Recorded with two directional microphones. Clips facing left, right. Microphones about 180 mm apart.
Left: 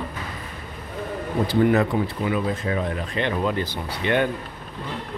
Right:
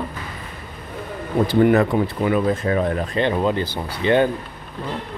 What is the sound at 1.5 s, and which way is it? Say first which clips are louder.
Speech: right 3 dB; 55° right (ahead or behind).